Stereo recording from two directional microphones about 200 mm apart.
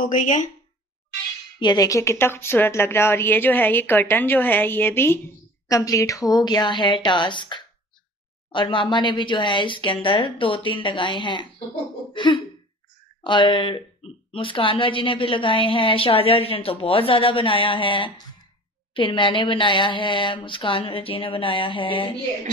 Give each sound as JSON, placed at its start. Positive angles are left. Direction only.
{"t": 0.0, "sound": "speech", "side_deg": 40}
{"t": 1.6, "sound": "a woman's voice", "side_deg": 20}
{"t": 12.1, "sound": "throat clearing", "side_deg": 25}
{"t": 13.2, "sound": "a woman's voice", "side_deg": 25}